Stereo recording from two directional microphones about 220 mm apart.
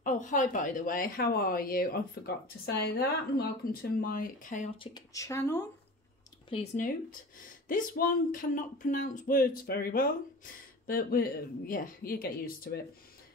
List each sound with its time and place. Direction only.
0.0 s speech: 35° left (ahead or behind)
4.7 s speech: 15° left (ahead or behind)
6.5 s speech: 35° left (ahead or behind)